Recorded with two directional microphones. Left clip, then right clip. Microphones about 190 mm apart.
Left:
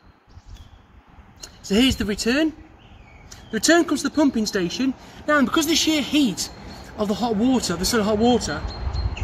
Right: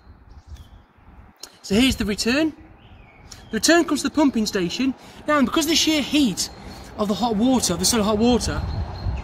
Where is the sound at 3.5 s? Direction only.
35° right (ahead or behind).